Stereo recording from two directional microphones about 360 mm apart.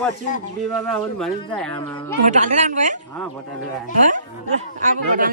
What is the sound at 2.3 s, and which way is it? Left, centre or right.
Speech, centre.